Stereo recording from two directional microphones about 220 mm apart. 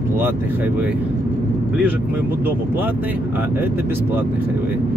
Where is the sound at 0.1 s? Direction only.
10° right (ahead or behind).